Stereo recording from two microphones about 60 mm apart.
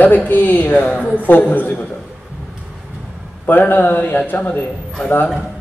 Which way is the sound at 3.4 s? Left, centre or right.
Left.